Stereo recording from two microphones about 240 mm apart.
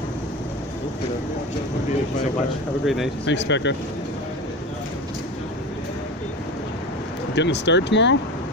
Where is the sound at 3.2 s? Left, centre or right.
Left.